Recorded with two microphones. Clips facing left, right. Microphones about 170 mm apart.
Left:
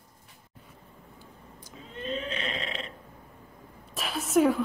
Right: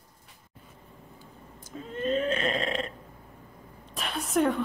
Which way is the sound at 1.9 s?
45° right (ahead or behind).